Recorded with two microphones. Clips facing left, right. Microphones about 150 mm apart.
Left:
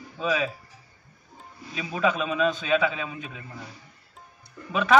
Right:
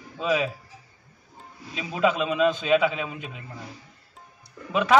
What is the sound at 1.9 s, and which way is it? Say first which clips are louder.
A man's voice: right 2 dB; 15° right (ahead or behind).